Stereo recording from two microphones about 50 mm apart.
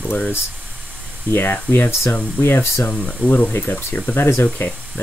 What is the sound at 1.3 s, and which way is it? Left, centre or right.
Speech, left.